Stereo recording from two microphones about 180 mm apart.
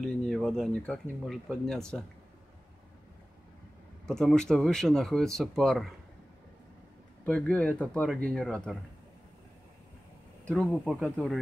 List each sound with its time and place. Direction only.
0.0 s speech: centre (ahead or behind)
4.0 s speech: 5° left (ahead or behind)
7.2 s speech: 5° left (ahead or behind)
10.4 s speech: 5° left (ahead or behind)